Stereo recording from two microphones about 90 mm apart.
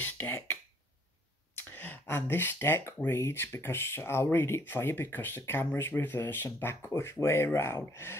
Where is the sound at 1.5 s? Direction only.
20° left (ahead or behind).